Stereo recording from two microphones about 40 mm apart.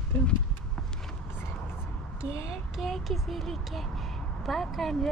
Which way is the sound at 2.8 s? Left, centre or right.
Centre.